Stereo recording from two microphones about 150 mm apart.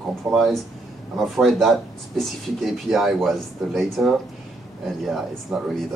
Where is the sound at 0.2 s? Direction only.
Centre (ahead or behind).